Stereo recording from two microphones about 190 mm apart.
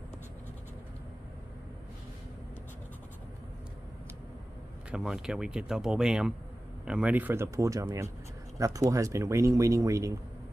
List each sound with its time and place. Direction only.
4.9 s speech: 5° right (ahead or behind)